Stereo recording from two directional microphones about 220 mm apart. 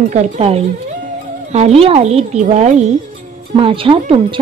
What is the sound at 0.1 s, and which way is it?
Speech, 30° right (ahead or behind).